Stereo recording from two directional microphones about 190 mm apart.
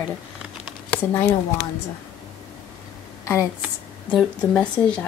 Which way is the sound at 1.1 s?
15° left (ahead or behind).